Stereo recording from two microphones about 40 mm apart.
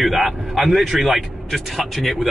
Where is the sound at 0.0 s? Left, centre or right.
Centre.